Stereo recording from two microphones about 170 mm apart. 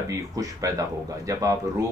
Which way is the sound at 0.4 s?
20° right (ahead or behind).